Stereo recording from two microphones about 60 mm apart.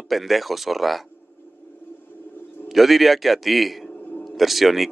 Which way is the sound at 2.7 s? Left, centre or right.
Centre.